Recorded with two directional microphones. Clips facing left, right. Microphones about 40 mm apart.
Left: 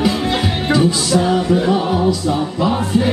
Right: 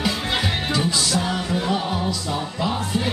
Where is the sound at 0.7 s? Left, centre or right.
Centre.